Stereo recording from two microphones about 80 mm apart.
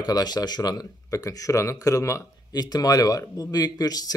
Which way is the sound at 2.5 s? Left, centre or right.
Left.